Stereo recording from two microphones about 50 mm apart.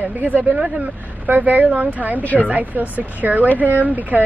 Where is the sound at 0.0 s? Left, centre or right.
Right.